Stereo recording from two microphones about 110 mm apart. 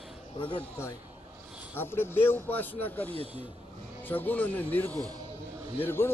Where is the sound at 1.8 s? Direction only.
20° left (ahead or behind).